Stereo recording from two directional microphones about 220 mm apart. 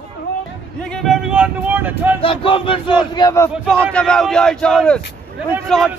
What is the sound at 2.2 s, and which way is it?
A man's voice, 25° left (ahead or behind).